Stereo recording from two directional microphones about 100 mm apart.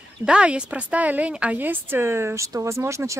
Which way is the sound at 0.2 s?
10° right (ahead or behind).